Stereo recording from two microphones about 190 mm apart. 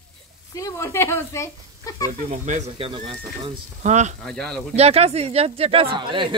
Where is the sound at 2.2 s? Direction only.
40° right (ahead or behind).